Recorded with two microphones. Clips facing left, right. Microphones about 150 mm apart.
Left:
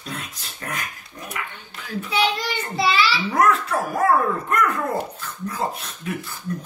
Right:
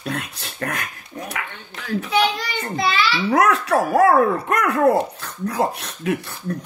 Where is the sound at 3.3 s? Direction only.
80° right.